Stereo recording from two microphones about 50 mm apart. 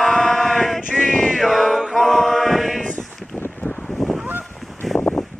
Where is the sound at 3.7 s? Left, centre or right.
Centre.